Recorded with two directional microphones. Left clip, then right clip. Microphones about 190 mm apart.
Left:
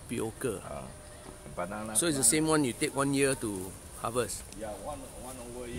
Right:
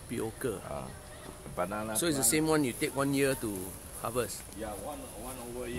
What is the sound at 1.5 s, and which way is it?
Speech, 50° right (ahead or behind).